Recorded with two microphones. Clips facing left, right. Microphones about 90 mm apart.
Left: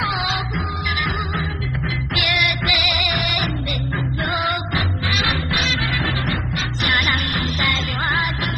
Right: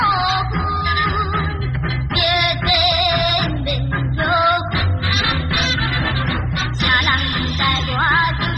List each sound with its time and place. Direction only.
0.0 s music: 40° right (ahead or behind)